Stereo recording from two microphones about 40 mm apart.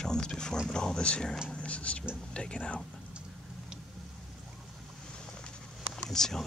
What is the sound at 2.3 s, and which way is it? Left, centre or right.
Speech, left.